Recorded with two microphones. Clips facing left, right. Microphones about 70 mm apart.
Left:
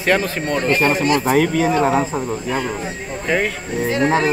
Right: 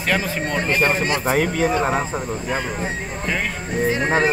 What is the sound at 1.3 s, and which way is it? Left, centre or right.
Speech, centre.